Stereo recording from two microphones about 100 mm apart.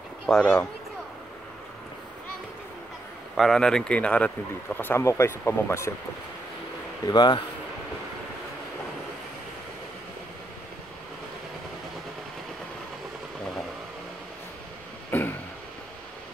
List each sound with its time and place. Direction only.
0.3 s speech: 10° left (ahead or behind)
3.3 s speech: 5° left (ahead or behind)
4.7 s speech: 25° left (ahead or behind)
7.1 s speech: 50° left (ahead or behind)
15.0 s a sound: 20° left (ahead or behind)